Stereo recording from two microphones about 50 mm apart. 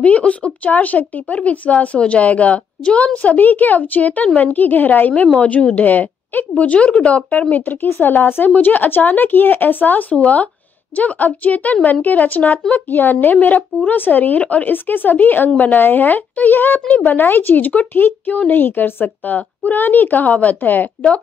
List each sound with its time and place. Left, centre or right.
0.0 s speech: left
5.9 s a woman's voice: left
19.0 s speech: left